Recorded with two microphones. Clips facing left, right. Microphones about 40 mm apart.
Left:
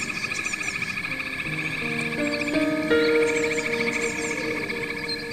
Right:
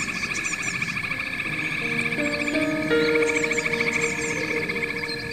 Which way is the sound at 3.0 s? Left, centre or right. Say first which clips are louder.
Even; centre.